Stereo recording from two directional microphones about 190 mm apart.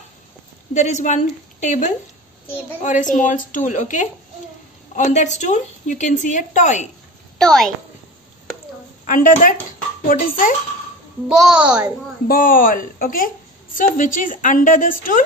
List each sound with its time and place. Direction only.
0.7 s a woman's voice: 40° left (ahead or behind)
7.3 s a woman's voice: centre (ahead or behind)
9.0 s a woman's voice: 45° left (ahead or behind)
11.2 s a child's voice: 5° right (ahead or behind)
12.3 s a woman's voice: 45° left (ahead or behind)